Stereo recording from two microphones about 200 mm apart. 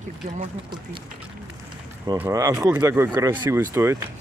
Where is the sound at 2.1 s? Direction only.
15° right (ahead or behind).